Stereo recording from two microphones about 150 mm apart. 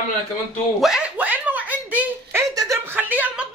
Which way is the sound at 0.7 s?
5° right (ahead or behind).